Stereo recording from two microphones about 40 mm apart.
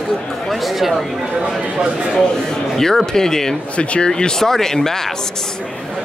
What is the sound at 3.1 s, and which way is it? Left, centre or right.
Speech, centre.